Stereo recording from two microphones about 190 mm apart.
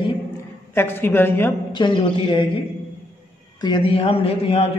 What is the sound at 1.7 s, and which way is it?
Speech, 25° left (ahead or behind).